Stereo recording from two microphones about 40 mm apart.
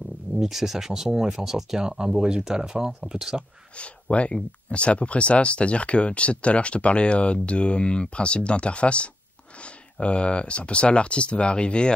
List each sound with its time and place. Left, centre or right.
0.4 s speech: centre
3.7 s speech: left